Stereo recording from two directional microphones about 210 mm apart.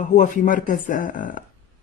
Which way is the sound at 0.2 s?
40° left (ahead or behind).